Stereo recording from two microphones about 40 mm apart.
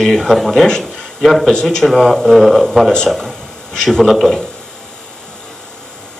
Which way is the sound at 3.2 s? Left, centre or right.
Centre.